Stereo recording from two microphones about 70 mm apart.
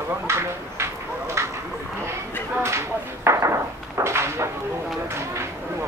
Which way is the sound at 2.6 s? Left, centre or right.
Right.